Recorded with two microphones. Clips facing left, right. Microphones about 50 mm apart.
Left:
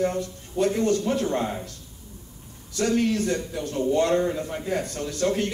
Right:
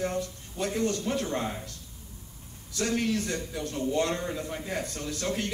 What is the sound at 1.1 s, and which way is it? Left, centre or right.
Speech, left.